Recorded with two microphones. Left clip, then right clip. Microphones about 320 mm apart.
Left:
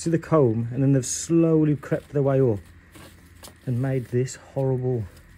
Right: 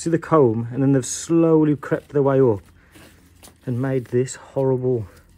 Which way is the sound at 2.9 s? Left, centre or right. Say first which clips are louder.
Left 4 dB; centre.